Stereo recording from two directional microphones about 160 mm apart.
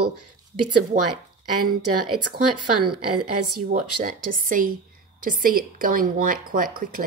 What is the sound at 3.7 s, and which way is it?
Speech, 60° right (ahead or behind).